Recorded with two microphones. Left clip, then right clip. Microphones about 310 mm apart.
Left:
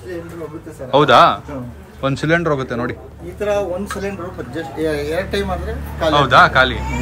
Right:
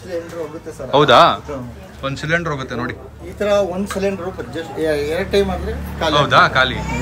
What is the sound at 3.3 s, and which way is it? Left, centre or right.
Speech, right.